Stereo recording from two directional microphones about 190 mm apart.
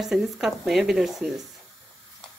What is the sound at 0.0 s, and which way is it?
Speech, centre (ahead or behind).